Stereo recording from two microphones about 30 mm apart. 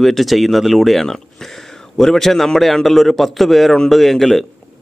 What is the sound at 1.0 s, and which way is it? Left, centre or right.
A man's voice, centre.